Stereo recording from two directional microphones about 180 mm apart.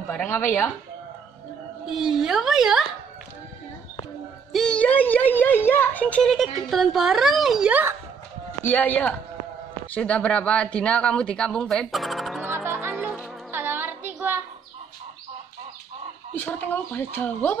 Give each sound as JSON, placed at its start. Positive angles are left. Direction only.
{"t": 0.1, "sound": "speech", "side_deg": 10}
{"t": 1.9, "sound": "a woman's voice", "side_deg": 0}
{"t": 4.5, "sound": "a woman's voice", "side_deg": 5}
{"t": 8.6, "sound": "a woman's voice", "side_deg": 10}
{"t": 12.4, "sound": "music", "side_deg": -10}
{"t": 16.3, "sound": "speech", "side_deg": 10}